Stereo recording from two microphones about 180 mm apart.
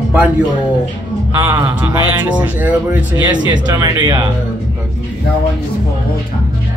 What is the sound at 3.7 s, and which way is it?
Speech, 20° right (ahead or behind).